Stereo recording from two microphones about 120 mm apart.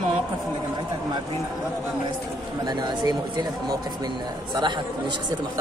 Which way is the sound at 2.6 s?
35° right (ahead or behind).